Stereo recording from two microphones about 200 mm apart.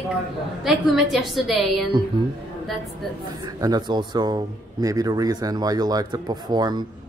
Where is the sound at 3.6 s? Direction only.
20° right (ahead or behind).